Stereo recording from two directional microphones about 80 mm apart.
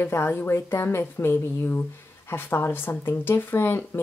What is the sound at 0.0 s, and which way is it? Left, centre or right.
Speech, left.